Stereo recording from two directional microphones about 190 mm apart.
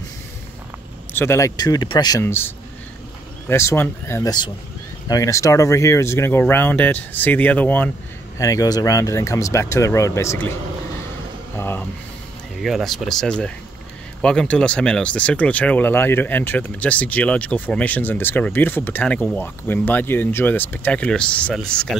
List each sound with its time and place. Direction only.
1.1 s speech: 15° left (ahead or behind)
11.5 s a sound: 10° left (ahead or behind)
12.6 s speech: centre (ahead or behind)